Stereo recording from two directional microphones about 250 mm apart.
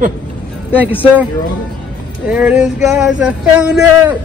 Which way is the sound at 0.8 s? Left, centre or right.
Centre.